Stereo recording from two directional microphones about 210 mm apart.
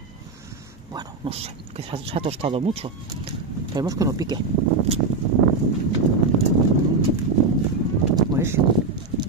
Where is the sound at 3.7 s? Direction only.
15° right (ahead or behind).